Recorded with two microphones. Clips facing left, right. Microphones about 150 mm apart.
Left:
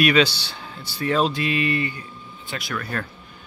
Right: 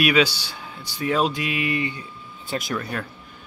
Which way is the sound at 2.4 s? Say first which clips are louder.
Right 5 dB; 40° right (ahead or behind).